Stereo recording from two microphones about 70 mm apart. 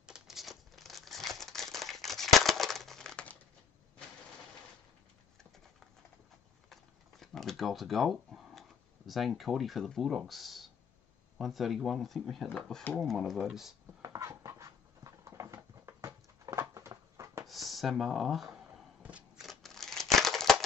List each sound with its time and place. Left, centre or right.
0.0 s crumpling: centre
6.7 s a sound: centre
11.3 s speech: centre
14.0 s a sound: right
17.5 s speech: centre
19.4 s scissors: centre